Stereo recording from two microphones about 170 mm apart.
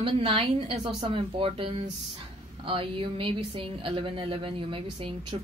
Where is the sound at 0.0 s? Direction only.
30° right (ahead or behind).